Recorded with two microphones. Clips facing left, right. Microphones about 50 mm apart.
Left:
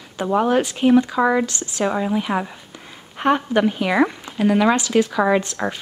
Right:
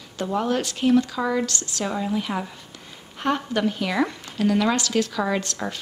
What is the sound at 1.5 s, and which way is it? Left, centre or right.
Speech, left.